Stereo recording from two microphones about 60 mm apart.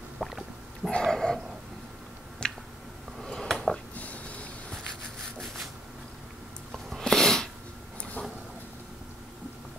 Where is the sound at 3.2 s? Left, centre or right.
Centre.